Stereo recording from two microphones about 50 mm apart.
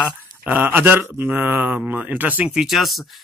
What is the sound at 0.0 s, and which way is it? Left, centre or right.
Mantra, right.